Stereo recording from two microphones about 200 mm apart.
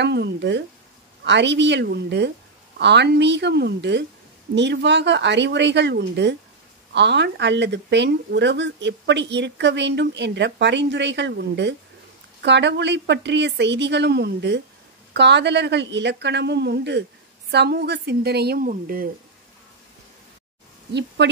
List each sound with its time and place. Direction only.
0.0 s a woman's voice: 60° right (ahead or behind)
21.2 s speech: 60° right (ahead or behind)